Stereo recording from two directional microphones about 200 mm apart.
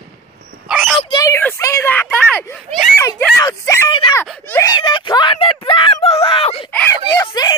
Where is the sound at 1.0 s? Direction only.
20° left (ahead or behind); by 2.9 s centre (ahead or behind).